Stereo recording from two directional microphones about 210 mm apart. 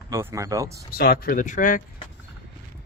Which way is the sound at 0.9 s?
45° left (ahead or behind).